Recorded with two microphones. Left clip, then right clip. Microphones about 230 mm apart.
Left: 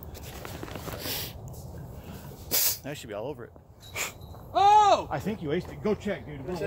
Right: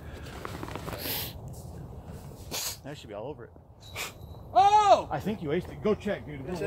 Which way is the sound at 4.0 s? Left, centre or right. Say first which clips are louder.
Left 3 dB; left.